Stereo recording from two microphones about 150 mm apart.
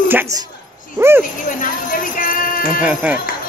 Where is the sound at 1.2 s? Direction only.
60° left (ahead or behind).